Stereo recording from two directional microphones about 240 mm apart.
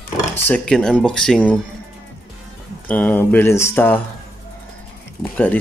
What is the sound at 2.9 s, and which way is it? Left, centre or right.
Speech, centre.